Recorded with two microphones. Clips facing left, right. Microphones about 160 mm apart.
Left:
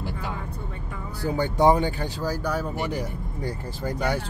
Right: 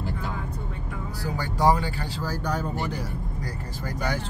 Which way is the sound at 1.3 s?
20° left (ahead or behind).